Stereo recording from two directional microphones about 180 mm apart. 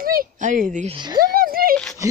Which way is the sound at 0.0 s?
50° right (ahead or behind).